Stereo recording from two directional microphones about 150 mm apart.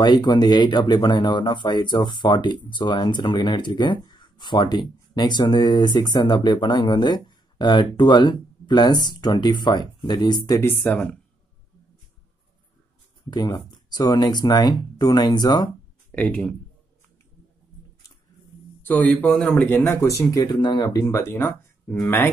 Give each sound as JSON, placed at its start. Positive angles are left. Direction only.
{"t": 0.0, "sound": "speech", "side_deg": 30}
{"t": 10.7, "sound": "speech", "side_deg": 10}
{"t": 13.3, "sound": "speech", "side_deg": 30}
{"t": 16.1, "sound": "speech", "side_deg": 10}
{"t": 18.8, "sound": "speech", "side_deg": 10}